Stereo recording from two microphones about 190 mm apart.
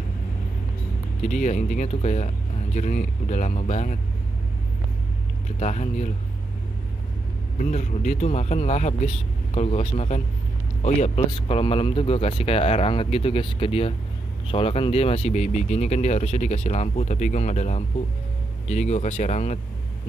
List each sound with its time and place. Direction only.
1.2 s speech: 40° left (ahead or behind)
5.6 s speech: 40° left (ahead or behind)
7.5 s speech: 35° left (ahead or behind)